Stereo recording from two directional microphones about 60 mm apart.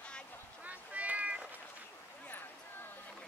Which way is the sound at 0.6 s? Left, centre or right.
Right.